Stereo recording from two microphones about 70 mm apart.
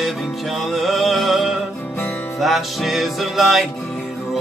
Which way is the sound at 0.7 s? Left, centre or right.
Centre.